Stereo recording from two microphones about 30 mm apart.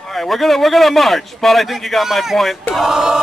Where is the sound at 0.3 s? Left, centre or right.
Centre.